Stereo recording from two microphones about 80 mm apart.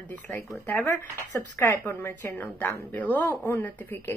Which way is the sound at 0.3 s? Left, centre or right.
Left.